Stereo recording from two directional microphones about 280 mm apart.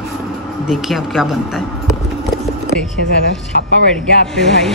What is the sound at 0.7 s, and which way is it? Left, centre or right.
Speech, centre.